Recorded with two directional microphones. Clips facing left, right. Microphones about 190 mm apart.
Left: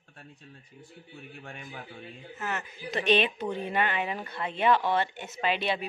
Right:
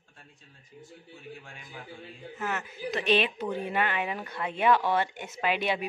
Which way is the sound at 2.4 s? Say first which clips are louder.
Right 2 dB; 5° right (ahead or behind).